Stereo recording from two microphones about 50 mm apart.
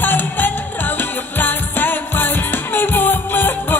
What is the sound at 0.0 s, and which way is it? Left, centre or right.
Music, left.